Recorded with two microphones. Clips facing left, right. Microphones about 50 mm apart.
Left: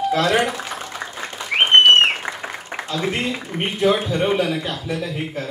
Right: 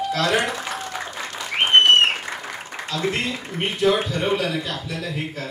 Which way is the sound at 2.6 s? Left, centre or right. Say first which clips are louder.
Left 1 dB; left.